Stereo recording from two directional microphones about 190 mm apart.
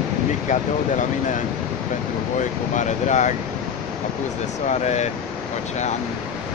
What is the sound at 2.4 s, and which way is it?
Speech, 40° left (ahead or behind).